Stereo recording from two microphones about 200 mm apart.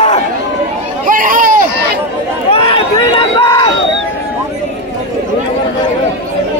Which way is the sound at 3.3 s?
25° left (ahead or behind).